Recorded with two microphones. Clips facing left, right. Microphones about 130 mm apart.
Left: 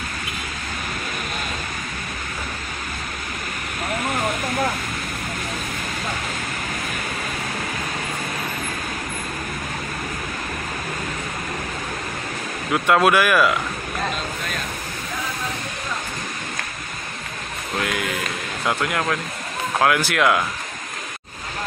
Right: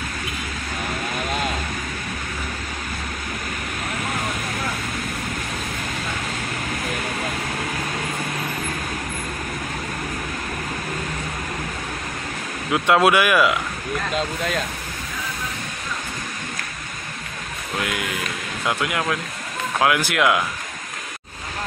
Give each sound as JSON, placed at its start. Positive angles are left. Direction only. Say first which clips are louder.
{"t": 12.7, "sound": "speech", "louder": "even", "side_deg": -15}
{"t": 17.7, "sound": "speech", "louder": "left 1 dB", "side_deg": -5}